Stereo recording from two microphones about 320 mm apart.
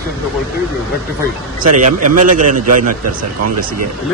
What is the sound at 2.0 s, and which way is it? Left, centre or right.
Speech, right.